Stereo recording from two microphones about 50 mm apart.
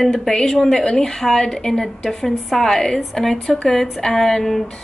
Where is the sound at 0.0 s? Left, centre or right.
Centre.